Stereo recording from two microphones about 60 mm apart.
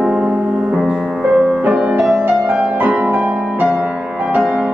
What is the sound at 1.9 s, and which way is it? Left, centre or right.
Music, right.